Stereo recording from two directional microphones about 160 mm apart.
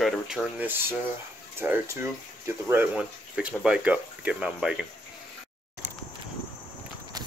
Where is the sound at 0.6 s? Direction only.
10° right (ahead or behind).